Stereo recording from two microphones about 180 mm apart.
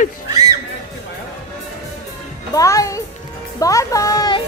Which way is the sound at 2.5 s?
20° left (ahead or behind).